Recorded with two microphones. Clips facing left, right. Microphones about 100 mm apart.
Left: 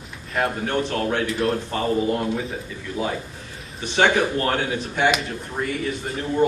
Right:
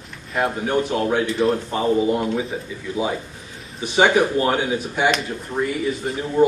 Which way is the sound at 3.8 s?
5° right (ahead or behind).